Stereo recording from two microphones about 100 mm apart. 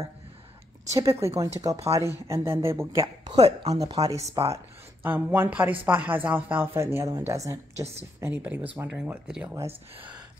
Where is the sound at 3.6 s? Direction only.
40° right (ahead or behind).